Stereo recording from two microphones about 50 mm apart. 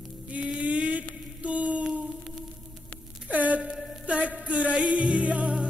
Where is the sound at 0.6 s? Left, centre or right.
Right.